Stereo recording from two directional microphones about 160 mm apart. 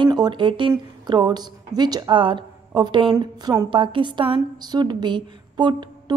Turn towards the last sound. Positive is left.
turn(degrees=-25)  # may be behind; listen again after turning